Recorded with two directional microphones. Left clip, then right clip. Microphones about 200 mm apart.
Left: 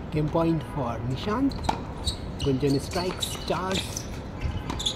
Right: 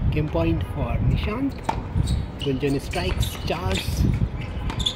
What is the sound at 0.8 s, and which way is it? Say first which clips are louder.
Speech: right 2 dB; 15° left (ahead or behind).